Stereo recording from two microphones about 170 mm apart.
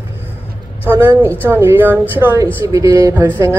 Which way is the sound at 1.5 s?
15° right (ahead or behind).